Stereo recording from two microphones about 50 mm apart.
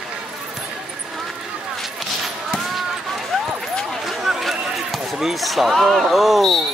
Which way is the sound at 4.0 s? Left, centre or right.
Centre.